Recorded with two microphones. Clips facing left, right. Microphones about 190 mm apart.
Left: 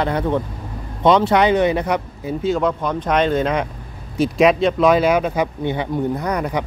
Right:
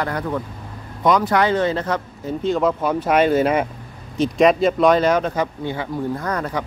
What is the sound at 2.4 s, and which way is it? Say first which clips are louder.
Speech: even; centre (ahead or behind).